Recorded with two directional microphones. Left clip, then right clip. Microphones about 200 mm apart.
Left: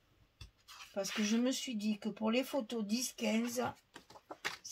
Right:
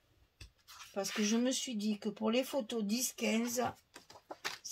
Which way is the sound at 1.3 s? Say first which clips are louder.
Right 1 dB; 35° right (ahead or behind).